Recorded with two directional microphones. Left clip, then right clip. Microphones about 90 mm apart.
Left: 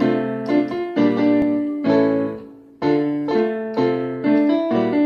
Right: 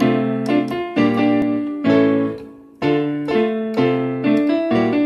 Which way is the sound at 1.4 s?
15° left (ahead or behind).